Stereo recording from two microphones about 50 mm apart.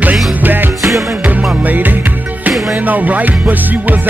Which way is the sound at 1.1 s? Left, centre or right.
Right.